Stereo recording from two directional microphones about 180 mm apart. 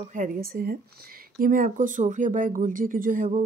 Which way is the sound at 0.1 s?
50° right (ahead or behind).